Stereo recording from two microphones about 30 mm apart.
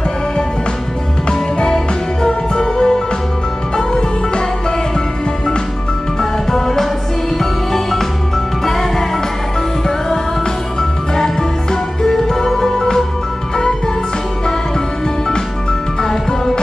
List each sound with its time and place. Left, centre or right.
2.2 s music: left
6.5 s music: centre
10.8 s music: centre
16.0 s music: centre